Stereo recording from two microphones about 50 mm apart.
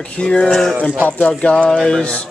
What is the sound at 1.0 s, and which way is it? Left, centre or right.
Speech, left.